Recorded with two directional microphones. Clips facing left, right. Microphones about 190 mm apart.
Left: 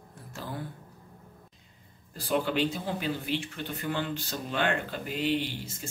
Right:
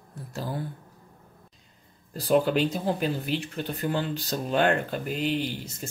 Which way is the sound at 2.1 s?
40° right (ahead or behind).